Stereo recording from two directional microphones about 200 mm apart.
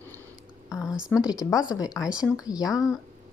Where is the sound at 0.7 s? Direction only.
5° right (ahead or behind).